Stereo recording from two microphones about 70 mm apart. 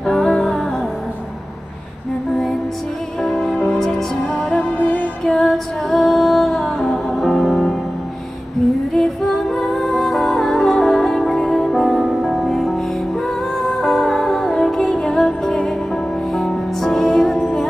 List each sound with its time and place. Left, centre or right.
0.0 s music: centre
3.3 s music: centre; by 5.0 s left
5.2 s music: centre
8.9 s music: centre